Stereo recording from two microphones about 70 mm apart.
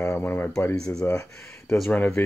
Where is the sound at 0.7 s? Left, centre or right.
Centre.